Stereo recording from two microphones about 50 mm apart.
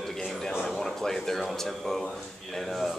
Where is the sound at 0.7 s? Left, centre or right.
Centre.